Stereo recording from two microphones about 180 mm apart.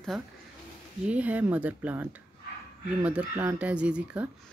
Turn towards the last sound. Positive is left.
turn(degrees=-5)  # may be behind; listen again after turning